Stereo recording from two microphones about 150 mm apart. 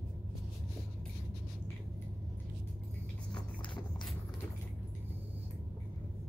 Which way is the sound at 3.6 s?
30° left (ahead or behind).